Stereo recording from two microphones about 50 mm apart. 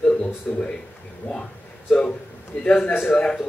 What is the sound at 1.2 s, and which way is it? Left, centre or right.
Speech, left.